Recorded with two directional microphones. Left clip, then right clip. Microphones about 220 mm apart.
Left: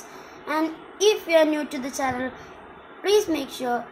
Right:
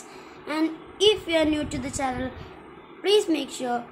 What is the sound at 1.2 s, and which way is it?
Speech, 10° right (ahead or behind).